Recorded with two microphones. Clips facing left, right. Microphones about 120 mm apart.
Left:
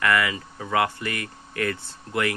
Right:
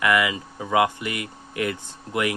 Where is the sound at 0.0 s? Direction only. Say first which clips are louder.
Right 1 dB; 15° right (ahead or behind).